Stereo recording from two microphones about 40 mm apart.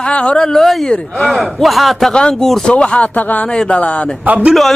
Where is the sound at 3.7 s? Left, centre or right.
Left.